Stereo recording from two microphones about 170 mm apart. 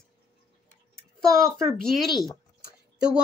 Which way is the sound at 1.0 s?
5° left (ahead or behind).